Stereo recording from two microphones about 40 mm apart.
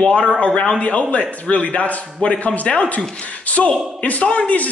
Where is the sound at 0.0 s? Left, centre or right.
Left.